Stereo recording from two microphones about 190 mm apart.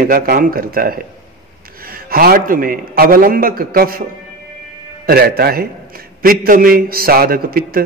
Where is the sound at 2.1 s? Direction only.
50° right (ahead or behind).